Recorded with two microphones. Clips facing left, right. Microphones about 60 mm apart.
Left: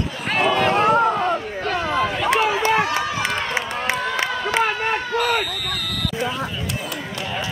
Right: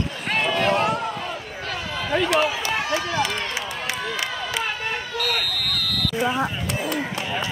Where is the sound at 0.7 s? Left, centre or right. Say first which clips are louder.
Left 6 dB; left.